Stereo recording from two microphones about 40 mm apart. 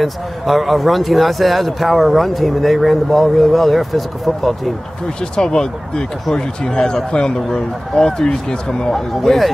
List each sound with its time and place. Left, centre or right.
0.0 s speech: centre
5.3 s a man's voice: left
8.9 s a man's voice: centre